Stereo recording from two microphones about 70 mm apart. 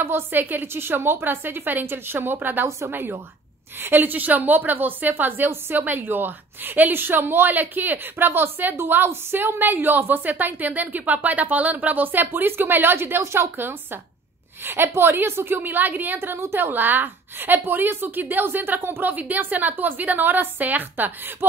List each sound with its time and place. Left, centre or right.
0.0 s a woman's voice: right